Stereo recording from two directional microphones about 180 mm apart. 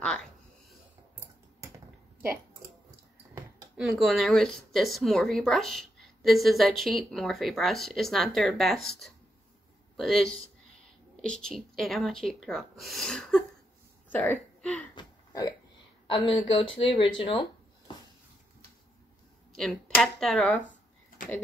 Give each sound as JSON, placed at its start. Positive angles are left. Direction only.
{"t": 3.3, "sound": "speech", "side_deg": -5}
{"t": 15.0, "sound": "hiccup", "side_deg": 20}
{"t": 16.1, "sound": "speech", "side_deg": 30}
{"t": 19.5, "sound": "speech", "side_deg": 5}